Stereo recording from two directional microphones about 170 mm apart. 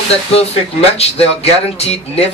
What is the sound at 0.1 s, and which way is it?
Speech, 35° left (ahead or behind).